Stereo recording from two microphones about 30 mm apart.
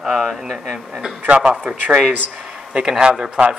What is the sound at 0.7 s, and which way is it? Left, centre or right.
Speech, centre.